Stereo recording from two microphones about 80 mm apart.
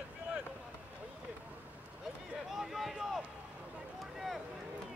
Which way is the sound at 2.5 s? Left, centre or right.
Centre.